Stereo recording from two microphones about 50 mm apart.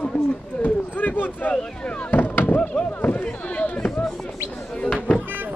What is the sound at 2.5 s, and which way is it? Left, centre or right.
Speech, left.